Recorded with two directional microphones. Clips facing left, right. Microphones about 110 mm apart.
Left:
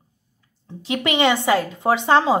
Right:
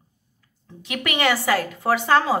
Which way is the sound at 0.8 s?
25° left (ahead or behind).